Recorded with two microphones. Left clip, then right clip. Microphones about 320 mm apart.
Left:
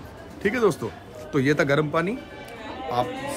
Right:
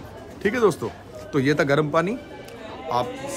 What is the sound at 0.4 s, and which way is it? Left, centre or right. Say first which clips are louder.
A man's voice: right 2 dB; centre.